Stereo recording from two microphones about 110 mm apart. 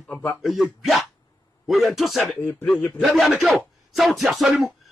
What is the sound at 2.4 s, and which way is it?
Speech, 15° left (ahead or behind).